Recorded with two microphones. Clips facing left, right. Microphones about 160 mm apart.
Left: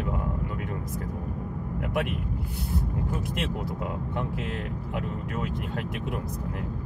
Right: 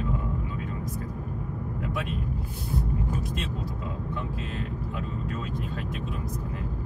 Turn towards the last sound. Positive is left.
turn(degrees=65)  # may be behind; listen again after turning